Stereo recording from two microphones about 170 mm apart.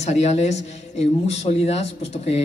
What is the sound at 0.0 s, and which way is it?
Speech, 40° left (ahead or behind).